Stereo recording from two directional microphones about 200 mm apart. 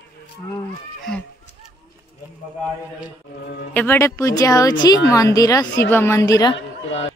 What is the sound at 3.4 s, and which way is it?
Music, 55° left (ahead or behind).